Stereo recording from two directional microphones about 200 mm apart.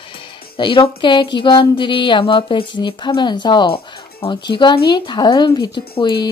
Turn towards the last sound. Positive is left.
turn(degrees=25)  # may be behind; listen again after turning